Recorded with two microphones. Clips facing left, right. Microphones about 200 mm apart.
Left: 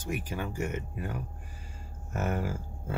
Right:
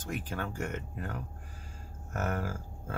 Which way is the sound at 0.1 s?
10° left (ahead or behind).